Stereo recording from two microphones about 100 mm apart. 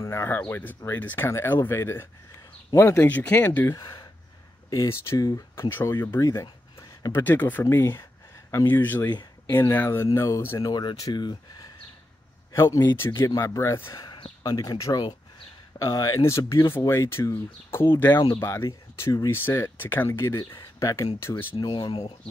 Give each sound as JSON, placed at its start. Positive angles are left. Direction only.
{"t": 0.0, "sound": "speech", "side_deg": 30}
{"t": 0.4, "sound": "speech", "side_deg": 15}
{"t": 3.7, "sound": "speech", "side_deg": 45}
{"t": 4.6, "sound": "speech", "side_deg": 30}
{"t": 6.4, "sound": "a sound", "side_deg": 40}
{"t": 7.2, "sound": "speech", "side_deg": 20}
{"t": 10.6, "sound": "speech", "side_deg": 45}
{"t": 12.5, "sound": "speech", "side_deg": 25}
{"t": 13.3, "sound": "speech", "side_deg": 35}
{"t": 14.0, "sound": "a sound", "side_deg": 55}
{"t": 14.4, "sound": "speech", "side_deg": 35}
{"t": 21.2, "sound": "speech", "side_deg": 20}
{"t": 21.5, "sound": "speech", "side_deg": 50}